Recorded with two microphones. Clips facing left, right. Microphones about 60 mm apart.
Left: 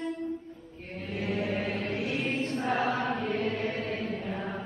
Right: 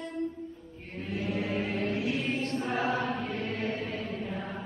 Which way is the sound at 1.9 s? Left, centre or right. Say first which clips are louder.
Even; centre.